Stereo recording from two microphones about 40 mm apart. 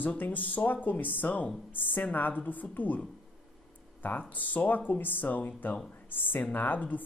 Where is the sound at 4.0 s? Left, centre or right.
Left.